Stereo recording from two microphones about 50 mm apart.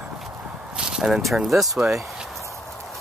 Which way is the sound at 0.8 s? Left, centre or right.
Centre.